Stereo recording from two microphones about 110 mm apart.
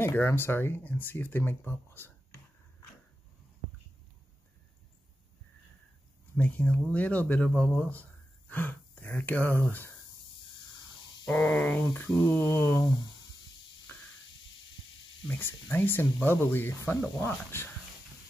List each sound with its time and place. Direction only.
0.0 s speech: 20° left (ahead or behind)
6.3 s speech: 15° left (ahead or behind)
11.5 s speech: 15° left (ahead or behind)
11.8 s speech: 25° left (ahead or behind)
12.8 s speech: 40° left (ahead or behind)
15.2 s speech: 20° left (ahead or behind)